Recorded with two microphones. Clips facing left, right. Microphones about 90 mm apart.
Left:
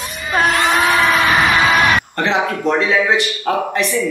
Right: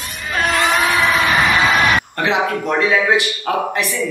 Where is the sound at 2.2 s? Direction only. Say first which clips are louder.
Left 1 dB; 5° right (ahead or behind).